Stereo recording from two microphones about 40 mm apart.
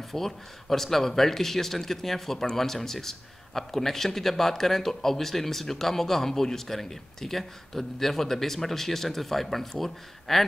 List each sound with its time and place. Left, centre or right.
0.1 s a man's voice: centre